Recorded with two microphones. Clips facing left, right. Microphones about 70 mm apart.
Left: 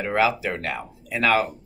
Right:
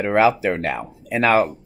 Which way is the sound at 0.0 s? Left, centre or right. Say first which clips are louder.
Right 5 dB; right.